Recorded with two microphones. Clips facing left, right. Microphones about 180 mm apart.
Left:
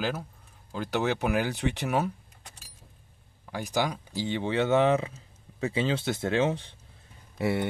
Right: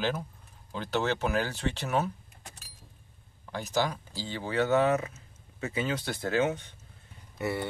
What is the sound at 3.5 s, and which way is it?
Speech, 10° left (ahead or behind).